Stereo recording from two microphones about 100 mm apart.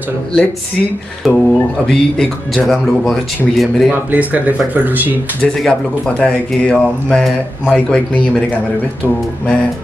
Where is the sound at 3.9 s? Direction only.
15° right (ahead or behind).